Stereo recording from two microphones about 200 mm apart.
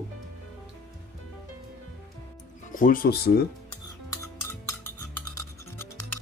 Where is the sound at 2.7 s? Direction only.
45° left (ahead or behind).